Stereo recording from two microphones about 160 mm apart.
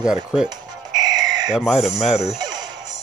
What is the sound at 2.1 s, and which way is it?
Speech, 40° left (ahead or behind).